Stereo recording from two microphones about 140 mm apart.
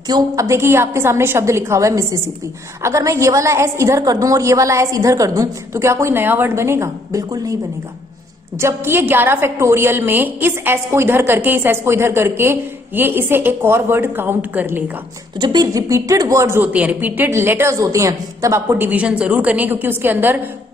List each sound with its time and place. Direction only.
0.1 s a woman's voice: 20° right (ahead or behind)
8.5 s a woman's voice: 20° right (ahead or behind)
15.3 s a woman's voice: 30° right (ahead or behind); by 20.3 s 15° right (ahead or behind)